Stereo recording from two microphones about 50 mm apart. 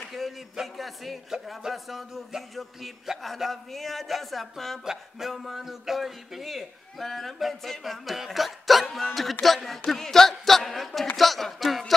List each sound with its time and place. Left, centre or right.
0.1 s a man's voice: centre